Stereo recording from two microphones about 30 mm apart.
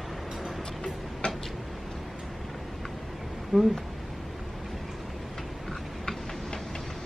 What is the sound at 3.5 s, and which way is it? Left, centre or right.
Speech, right.